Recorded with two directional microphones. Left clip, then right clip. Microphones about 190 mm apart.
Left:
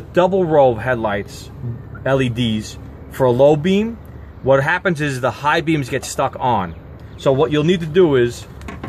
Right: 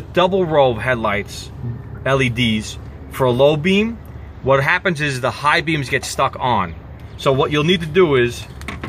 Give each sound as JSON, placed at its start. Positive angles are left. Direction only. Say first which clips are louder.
{"t": 0.1, "sound": "a man's voice", "louder": "left 1 dB", "side_deg": 40}